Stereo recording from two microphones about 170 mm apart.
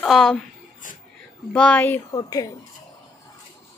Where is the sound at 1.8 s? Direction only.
20° left (ahead or behind).